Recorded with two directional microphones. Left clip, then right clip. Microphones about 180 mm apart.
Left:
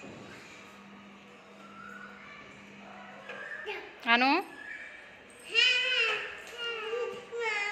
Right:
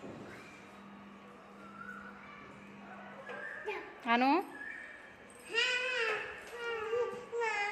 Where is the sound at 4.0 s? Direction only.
5° right (ahead or behind).